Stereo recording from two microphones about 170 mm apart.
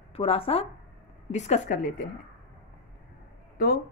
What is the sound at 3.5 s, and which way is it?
Speech, 60° left (ahead or behind).